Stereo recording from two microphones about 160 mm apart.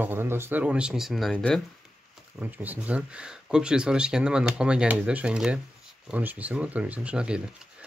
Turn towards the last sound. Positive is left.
turn(degrees=-5)  # may be behind; listen again after turning